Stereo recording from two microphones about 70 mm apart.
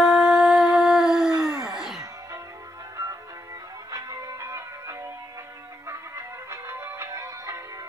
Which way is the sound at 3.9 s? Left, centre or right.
Right.